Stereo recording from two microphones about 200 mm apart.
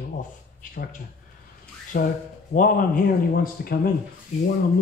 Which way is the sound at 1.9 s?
45° left (ahead or behind).